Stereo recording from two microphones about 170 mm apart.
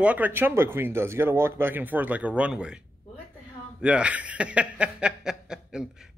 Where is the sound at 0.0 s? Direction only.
10° right (ahead or behind).